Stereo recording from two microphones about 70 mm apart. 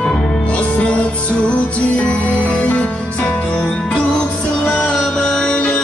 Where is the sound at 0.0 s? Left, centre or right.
Centre.